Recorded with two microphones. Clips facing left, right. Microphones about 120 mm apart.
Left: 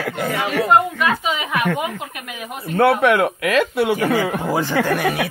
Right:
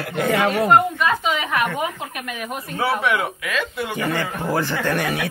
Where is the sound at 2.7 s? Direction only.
60° left (ahead or behind).